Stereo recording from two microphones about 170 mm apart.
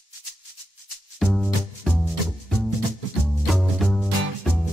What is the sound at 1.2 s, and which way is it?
Music, centre (ahead or behind).